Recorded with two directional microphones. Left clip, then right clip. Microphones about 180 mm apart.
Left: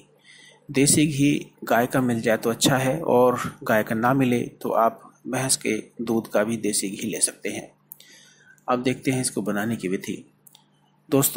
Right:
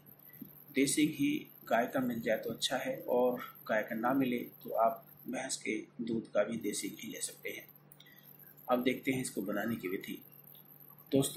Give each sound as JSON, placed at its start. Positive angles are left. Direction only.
{"t": 0.7, "sound": "speech", "side_deg": 35}
{"t": 8.6, "sound": "speech", "side_deg": 30}